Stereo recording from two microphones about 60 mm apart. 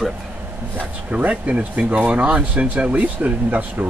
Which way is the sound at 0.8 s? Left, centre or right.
Right.